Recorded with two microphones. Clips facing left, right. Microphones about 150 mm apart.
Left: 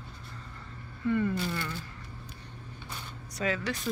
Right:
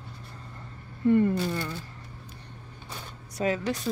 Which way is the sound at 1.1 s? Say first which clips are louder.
Right 7 dB; 45° right (ahead or behind).